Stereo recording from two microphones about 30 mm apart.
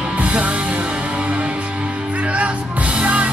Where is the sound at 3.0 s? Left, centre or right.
Right.